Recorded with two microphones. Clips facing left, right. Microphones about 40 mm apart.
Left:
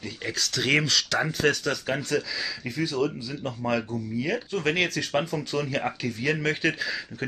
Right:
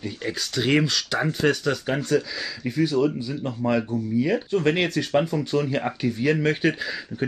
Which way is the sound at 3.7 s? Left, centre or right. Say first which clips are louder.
Right 4 dB; centre.